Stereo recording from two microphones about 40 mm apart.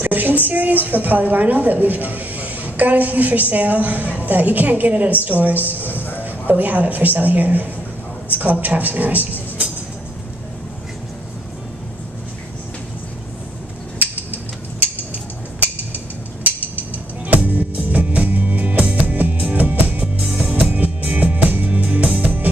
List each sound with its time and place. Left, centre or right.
0.0 s music: right
0.5 s a woman's voice: right
13.9 s a sound: right
17.3 s music: right
20.2 s music: right
20.7 s music: right